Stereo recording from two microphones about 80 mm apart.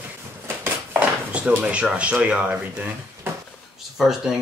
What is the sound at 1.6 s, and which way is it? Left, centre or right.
Speech, centre.